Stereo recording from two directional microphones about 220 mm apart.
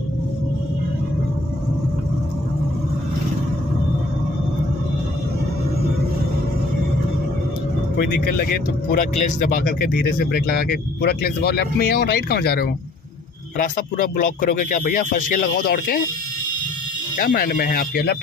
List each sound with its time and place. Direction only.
8.0 s speech: 45° left (ahead or behind)
17.2 s speech: 40° left (ahead or behind)